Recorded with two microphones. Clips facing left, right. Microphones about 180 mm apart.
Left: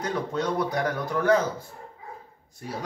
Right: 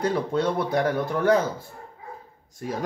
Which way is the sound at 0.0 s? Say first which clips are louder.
Right 4 dB; 30° right (ahead or behind).